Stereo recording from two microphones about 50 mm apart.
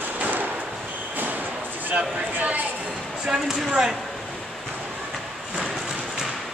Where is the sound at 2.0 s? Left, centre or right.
Right.